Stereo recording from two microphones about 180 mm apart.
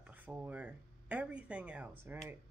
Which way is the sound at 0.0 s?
10° right (ahead or behind).